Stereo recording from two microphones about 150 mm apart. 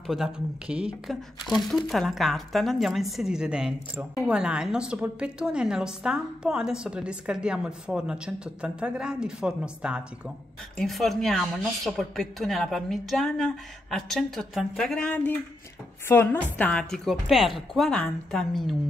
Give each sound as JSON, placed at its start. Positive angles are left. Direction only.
{"t": 0.0, "sound": "a woman's voice", "side_deg": 0}
{"t": 16.5, "sound": "speech", "side_deg": 10}